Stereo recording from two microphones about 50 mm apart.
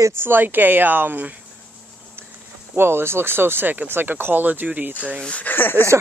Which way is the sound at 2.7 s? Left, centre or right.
Right.